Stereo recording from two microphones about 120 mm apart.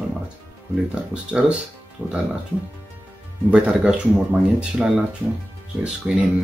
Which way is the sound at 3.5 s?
10° right (ahead or behind).